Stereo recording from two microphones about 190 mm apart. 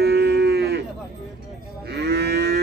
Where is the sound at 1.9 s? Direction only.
60° right (ahead or behind).